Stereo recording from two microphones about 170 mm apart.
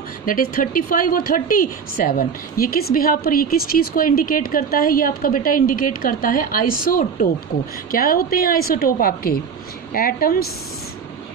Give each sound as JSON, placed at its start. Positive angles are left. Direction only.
{"t": 0.2, "sound": "speech", "side_deg": 55}